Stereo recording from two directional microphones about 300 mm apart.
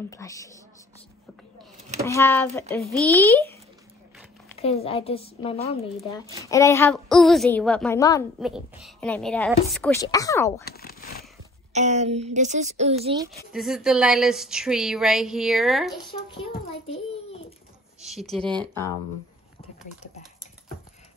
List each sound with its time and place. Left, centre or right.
0.1 s speech: centre
2.0 s speech: centre
4.6 s a woman's voice: centre
8.4 s speech: centre
10.6 s a sound: left
11.7 s speech: right
13.5 s speech: centre
16.8 s a child's voice: centre
18.0 s speech: centre